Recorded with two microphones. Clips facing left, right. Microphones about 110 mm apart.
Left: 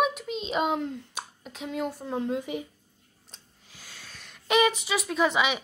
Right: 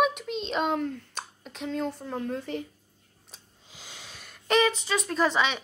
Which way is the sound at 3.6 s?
20° right (ahead or behind).